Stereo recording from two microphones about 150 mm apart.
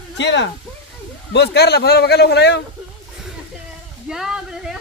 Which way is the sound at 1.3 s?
90° left.